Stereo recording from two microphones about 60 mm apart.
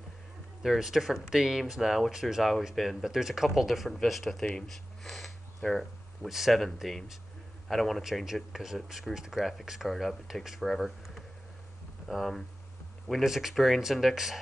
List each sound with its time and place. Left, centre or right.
0.6 s speech: centre
4.6 s a sound: centre
6.2 s speech: centre